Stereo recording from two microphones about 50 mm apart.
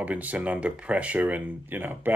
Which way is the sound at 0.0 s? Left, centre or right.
Right.